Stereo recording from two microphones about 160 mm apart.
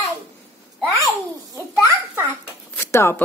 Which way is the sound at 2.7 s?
15° left (ahead or behind).